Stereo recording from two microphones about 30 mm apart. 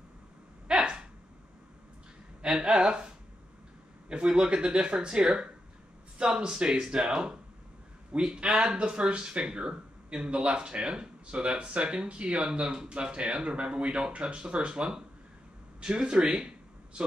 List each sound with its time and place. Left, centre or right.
0.7 s a sound: right
2.4 s speech: right
4.3 s speech: right
14.5 s speech: right